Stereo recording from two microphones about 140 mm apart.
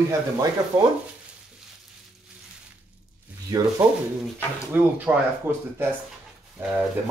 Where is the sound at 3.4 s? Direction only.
25° right (ahead or behind).